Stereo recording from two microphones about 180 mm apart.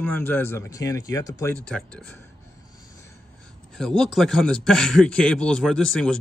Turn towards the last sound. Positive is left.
turn(degrees=5)  # may be behind; listen again after turning